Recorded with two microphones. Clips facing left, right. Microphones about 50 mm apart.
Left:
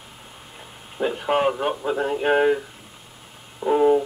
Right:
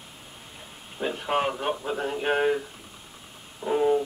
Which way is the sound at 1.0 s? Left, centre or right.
Centre.